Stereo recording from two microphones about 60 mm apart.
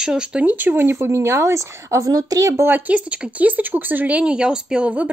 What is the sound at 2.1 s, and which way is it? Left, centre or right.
Speech, right.